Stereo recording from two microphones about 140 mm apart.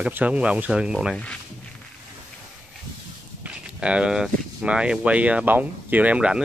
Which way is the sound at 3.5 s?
10° right (ahead or behind).